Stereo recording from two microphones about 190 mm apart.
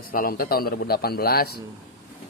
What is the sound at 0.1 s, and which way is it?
Speech, 50° left (ahead or behind).